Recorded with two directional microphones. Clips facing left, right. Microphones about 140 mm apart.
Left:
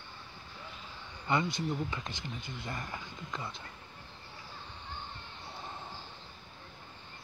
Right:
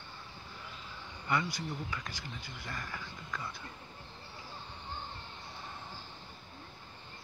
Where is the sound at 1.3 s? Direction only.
25° left (ahead or behind).